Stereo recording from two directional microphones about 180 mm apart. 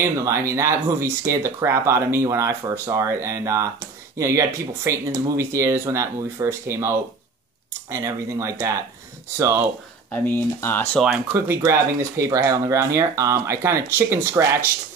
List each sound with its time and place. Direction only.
0.0 s speech: 15° right (ahead or behind)
10.1 s speech: 10° left (ahead or behind)
11.3 s speech: 15° right (ahead or behind)